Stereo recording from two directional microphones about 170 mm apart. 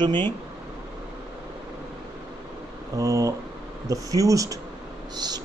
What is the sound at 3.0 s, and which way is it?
Speech, 20° right (ahead or behind).